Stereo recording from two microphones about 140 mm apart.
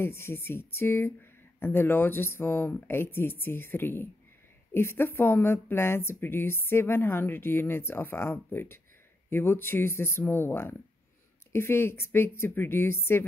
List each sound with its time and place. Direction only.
0.0 s speech: 15° left (ahead or behind)